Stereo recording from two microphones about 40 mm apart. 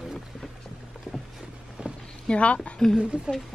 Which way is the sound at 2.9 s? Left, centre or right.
Right.